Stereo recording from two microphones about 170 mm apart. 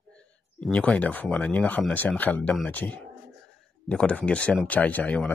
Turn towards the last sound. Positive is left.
turn(degrees=10)  # may be behind; listen again after turning